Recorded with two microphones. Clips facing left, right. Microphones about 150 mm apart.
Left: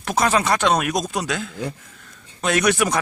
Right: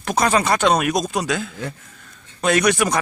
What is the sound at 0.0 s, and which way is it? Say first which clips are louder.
A man's voice: right 1 dB; centre (ahead or behind).